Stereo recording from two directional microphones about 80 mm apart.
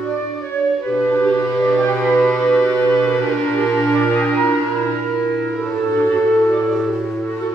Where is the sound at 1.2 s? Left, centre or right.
Centre.